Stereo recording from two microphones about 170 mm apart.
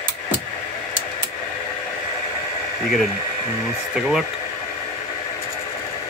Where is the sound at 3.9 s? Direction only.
5° right (ahead or behind).